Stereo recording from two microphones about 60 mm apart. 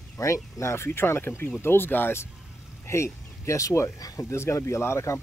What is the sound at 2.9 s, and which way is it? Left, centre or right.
Speech, left.